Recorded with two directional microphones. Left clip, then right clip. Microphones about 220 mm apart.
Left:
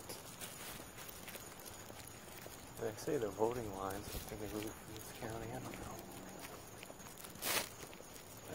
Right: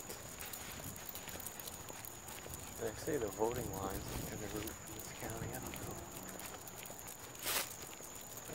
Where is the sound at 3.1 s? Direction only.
10° left (ahead or behind).